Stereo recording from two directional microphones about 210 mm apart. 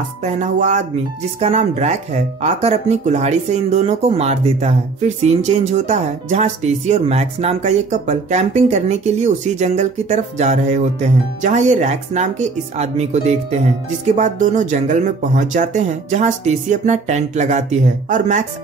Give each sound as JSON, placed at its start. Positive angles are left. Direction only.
{"t": 0.2, "sound": "speech", "side_deg": -35}